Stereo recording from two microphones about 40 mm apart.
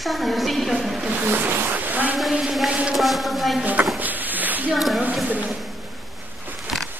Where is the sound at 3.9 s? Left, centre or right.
Right.